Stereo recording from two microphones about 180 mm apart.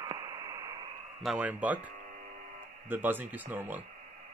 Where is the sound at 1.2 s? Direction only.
5° right (ahead or behind).